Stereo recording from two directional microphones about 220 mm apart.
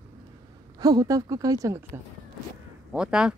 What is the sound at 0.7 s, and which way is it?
Speech, 15° right (ahead or behind).